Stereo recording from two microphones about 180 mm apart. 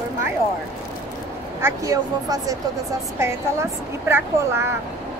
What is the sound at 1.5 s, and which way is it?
A woman's voice, 15° right (ahead or behind).